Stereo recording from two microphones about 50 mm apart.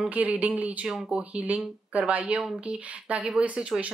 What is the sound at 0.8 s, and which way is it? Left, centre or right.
Speech, centre.